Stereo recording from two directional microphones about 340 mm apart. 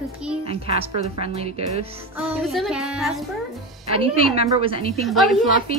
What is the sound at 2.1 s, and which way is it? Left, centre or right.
A child's voice, centre.